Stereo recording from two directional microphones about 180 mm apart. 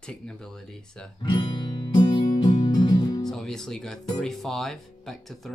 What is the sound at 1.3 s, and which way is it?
Music, 25° left (ahead or behind).